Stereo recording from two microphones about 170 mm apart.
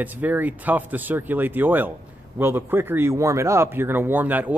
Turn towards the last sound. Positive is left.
turn(degrees=-10)  # may be behind; listen again after turning